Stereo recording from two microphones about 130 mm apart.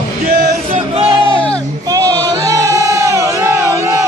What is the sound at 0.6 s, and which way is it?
Music, 45° right (ahead or behind).